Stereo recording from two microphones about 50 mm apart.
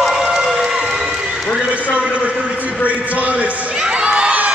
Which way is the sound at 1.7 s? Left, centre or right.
Right.